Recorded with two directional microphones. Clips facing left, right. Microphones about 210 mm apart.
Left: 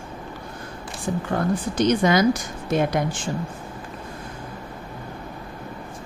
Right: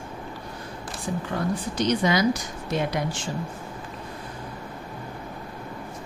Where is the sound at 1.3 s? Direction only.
50° left (ahead or behind).